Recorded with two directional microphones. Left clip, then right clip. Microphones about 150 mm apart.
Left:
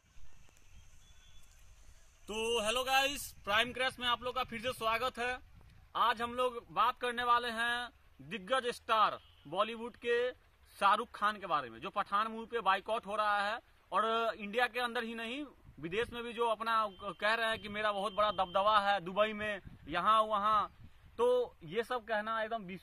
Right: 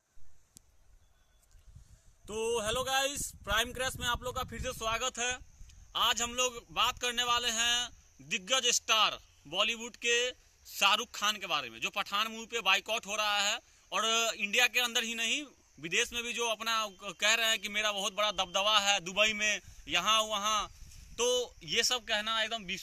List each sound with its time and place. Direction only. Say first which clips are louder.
3.4 s speech: even; 15° right (ahead or behind)
5.9 s a man's voice: right 2 dB; centre (ahead or behind)